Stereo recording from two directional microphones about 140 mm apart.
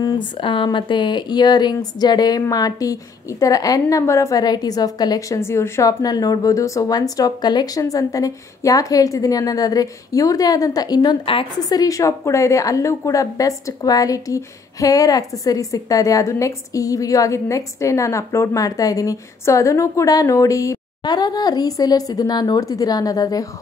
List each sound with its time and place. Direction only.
0.4 s a woman's voice: 35° left (ahead or behind)
11.8 s a woman's voice: 25° left (ahead or behind)